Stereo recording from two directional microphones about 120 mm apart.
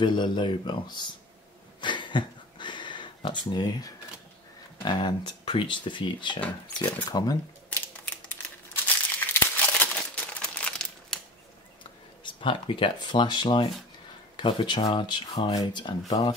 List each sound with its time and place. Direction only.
0.0 s speech: 40° left (ahead or behind)
1.8 s a sound: 40° left (ahead or behind)
4.8 s speech: 40° left (ahead or behind)
8.8 s crumpling: 20° left (ahead or behind)
11.8 s speech: 45° left (ahead or behind)